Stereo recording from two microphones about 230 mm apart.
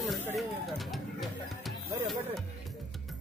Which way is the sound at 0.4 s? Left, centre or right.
Centre.